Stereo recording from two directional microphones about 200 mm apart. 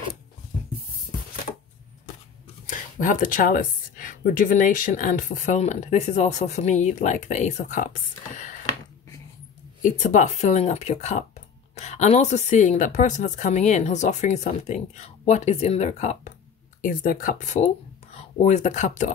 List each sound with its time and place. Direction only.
2.7 s a woman's voice: 40° left (ahead or behind)
9.8 s a woman's voice: 40° left (ahead or behind)
16.8 s speech: 45° left (ahead or behind)